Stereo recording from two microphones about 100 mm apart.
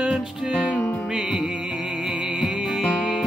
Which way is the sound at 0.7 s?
20° left (ahead or behind).